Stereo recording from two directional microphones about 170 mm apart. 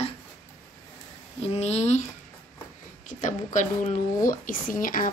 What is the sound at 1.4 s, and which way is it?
Speech, 40° left (ahead or behind).